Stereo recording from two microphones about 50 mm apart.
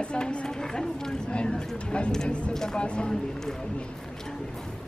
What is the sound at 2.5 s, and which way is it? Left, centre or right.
Speech, centre.